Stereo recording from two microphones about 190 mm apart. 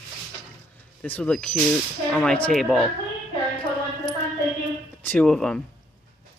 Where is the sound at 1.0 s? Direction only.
5° left (ahead or behind).